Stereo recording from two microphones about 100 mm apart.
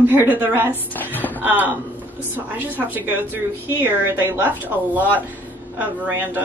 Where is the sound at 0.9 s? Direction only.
20° left (ahead or behind).